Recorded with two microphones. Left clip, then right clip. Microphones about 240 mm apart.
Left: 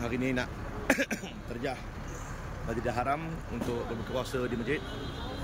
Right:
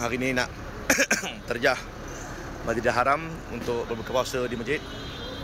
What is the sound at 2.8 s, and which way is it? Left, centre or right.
Speech, centre.